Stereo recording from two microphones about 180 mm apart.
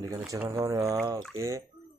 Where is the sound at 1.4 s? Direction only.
15° right (ahead or behind).